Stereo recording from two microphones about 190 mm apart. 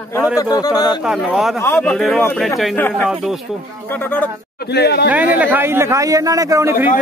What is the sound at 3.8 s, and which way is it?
Speech, 10° left (ahead or behind).